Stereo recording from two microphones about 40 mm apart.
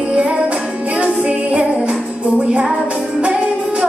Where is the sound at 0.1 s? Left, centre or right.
Right.